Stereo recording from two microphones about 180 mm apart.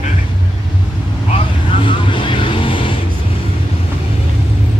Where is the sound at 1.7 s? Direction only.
30° left (ahead or behind).